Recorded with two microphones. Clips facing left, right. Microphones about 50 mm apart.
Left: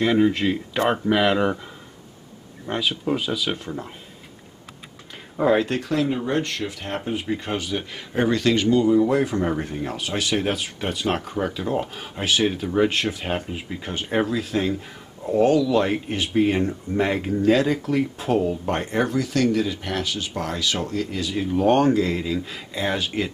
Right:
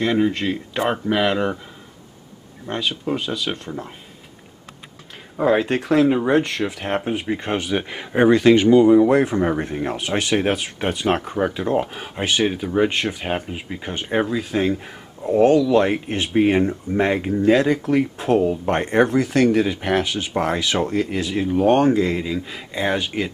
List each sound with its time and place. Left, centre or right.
0.0 s speech: centre
2.6 s speech: centre
5.4 s speech: centre
5.7 s speech: right
6.6 s speech: right
9.3 s speech: centre
16.2 s speech: right
16.5 s speech: centre
18.9 s speech: right
21.4 s speech: centre